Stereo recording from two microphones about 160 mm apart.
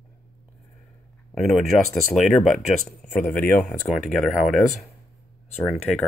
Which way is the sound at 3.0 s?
10° left (ahead or behind).